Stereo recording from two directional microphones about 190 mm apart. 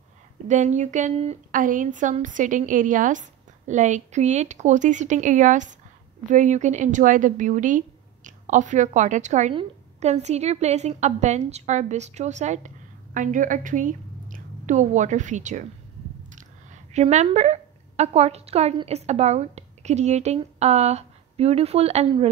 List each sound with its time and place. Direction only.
0.5 s speech: 40° right (ahead or behind)